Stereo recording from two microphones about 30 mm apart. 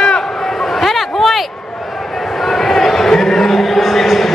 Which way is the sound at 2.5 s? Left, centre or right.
Centre.